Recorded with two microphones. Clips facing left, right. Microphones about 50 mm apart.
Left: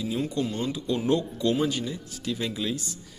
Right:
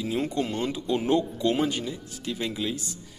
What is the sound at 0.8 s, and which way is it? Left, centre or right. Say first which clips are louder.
Speech: right 1 dB; right.